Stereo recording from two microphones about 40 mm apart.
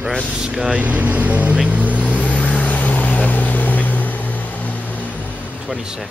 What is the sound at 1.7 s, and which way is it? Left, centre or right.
Vehicle, right.